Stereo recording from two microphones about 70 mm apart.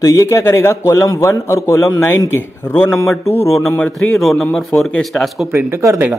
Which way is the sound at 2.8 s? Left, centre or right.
Left.